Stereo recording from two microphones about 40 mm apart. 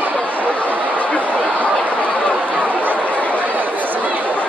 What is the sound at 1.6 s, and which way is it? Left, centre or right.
Chatter, left.